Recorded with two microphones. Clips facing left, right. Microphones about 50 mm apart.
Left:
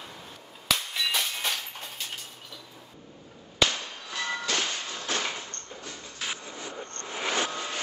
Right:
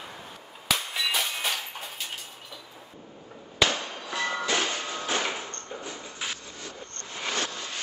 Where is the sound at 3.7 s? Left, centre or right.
Centre.